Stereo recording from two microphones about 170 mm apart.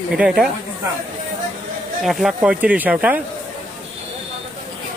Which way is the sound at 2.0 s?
Centre (ahead or behind).